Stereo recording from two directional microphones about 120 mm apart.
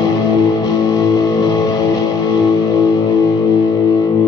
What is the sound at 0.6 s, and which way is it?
Music, 35° left (ahead or behind).